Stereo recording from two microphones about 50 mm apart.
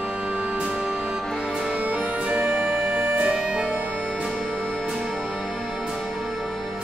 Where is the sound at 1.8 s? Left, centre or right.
Right.